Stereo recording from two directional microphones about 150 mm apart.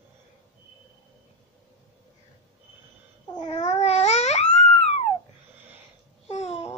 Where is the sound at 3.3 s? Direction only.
30° left (ahead or behind).